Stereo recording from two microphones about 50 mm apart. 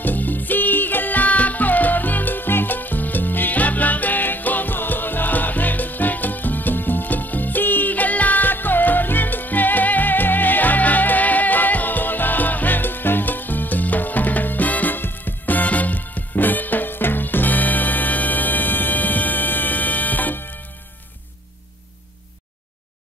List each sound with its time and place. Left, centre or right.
0.0 s music: left